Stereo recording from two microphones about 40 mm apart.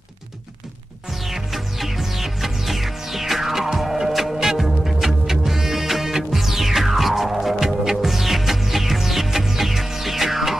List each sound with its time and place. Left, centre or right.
1.3 s music: centre